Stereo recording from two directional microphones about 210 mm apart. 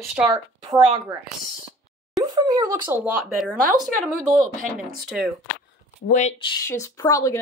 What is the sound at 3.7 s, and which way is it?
Speech, 15° right (ahead or behind).